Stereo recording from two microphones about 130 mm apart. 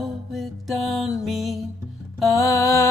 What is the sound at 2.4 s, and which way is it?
Mantra, 20° left (ahead or behind).